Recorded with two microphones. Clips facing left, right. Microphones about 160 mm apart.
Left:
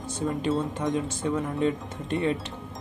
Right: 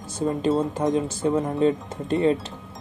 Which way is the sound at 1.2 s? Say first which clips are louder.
Right 5 dB; 30° right (ahead or behind).